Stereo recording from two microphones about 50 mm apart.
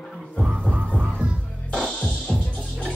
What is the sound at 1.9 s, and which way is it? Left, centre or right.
Music, left.